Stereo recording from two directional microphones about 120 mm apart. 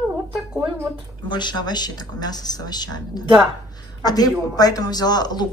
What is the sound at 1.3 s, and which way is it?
Speech, 35° left (ahead or behind).